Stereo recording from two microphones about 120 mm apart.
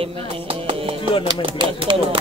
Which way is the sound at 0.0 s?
50° right (ahead or behind).